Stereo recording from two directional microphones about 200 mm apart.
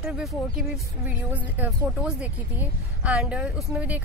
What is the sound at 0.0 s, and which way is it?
A woman's voice, centre (ahead or behind).